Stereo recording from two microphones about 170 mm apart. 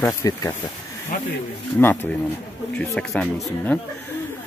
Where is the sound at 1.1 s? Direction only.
55° left (ahead or behind).